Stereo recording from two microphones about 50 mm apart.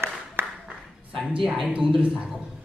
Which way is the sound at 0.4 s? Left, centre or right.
Right.